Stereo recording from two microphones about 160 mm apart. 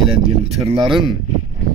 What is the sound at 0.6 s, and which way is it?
Speech, 35° right (ahead or behind).